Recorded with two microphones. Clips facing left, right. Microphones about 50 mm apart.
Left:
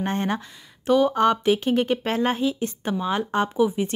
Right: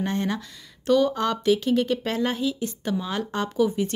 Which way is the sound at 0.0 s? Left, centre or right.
Left.